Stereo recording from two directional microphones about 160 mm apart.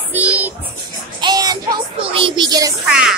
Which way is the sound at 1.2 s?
25° right (ahead or behind).